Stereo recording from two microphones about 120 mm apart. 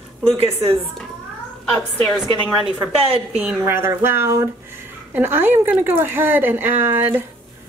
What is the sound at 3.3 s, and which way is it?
A woman's voice, 15° right (ahead or behind).